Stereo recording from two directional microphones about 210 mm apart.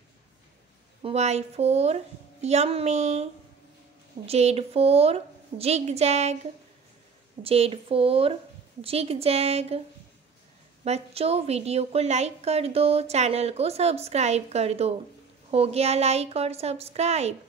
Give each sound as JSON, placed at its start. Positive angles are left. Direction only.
{"t": 1.0, "sound": "a woman's voice", "side_deg": -30}
{"t": 4.3, "sound": "a woman's voice", "side_deg": -30}
{"t": 7.4, "sound": "a woman's voice", "side_deg": -30}
{"t": 10.8, "sound": "a woman's voice", "side_deg": -30}